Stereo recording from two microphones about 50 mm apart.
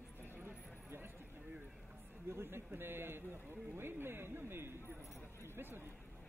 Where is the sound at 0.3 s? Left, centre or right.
Right.